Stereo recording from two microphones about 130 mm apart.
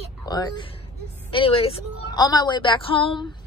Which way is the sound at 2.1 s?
30° left (ahead or behind).